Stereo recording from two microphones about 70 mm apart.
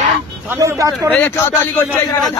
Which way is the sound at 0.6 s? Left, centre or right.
Right.